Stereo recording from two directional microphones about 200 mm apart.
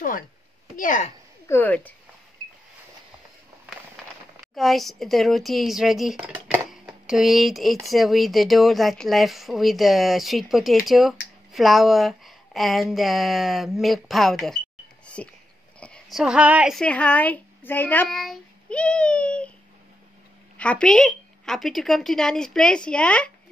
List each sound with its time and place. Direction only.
0.7 s speech: 40° left (ahead or behind)
1.5 s speech: 10° left (ahead or behind)
4.6 s a woman's voice: centre (ahead or behind)
20.5 s speech: 5° left (ahead or behind)